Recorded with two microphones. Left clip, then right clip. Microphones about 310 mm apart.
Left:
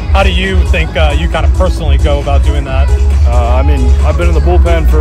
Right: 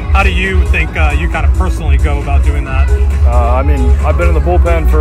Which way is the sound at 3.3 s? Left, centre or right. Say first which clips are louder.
Even; centre.